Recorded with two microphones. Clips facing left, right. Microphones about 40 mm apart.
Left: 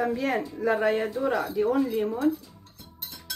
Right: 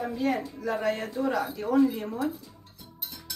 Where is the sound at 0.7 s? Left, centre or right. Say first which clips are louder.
Left 4 dB; centre.